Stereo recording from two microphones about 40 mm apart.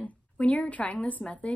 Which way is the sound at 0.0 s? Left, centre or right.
Left.